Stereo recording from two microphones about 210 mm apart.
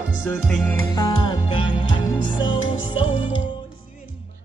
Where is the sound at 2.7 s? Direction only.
70° left (ahead or behind).